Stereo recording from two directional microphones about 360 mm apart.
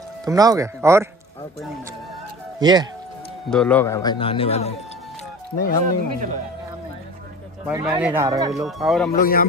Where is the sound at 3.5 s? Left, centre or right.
Centre.